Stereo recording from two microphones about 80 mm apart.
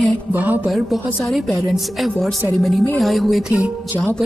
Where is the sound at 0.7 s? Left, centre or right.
Centre.